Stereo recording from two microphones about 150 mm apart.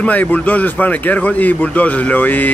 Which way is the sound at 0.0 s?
10° left (ahead or behind).